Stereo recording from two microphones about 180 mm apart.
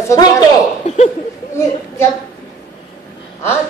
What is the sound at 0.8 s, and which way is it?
Chuckle, 40° left (ahead or behind).